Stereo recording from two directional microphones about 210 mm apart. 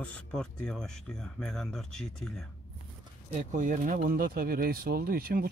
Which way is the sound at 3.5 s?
40° right (ahead or behind).